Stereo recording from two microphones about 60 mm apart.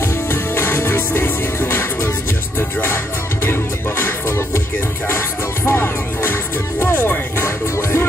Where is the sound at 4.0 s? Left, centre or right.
Left.